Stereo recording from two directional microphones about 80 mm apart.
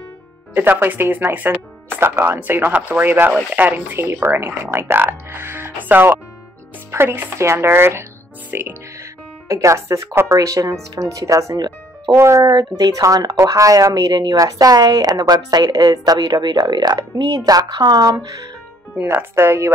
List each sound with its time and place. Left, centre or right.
0.6 s speech: right
9.5 s speech: right
12.2 s speech: right
12.4 s a woman's voice: right
18.9 s speech: right